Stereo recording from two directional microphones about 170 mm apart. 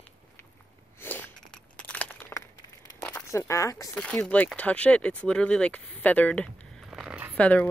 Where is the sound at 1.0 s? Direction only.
10° left (ahead or behind).